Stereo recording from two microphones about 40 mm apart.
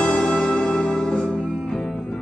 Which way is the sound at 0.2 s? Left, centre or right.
Centre.